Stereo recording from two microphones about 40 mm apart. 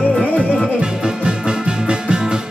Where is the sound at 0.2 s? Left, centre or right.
Left.